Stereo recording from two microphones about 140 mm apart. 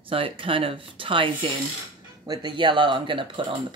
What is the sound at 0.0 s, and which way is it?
Speech, 40° right (ahead or behind).